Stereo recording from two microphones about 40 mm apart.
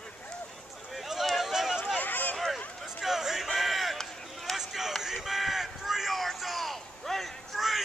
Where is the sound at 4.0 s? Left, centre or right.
Centre.